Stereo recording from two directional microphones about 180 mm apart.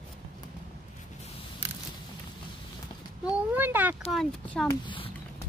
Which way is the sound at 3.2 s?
10° right (ahead or behind).